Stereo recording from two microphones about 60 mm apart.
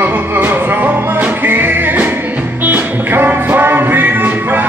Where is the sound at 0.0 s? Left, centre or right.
Right.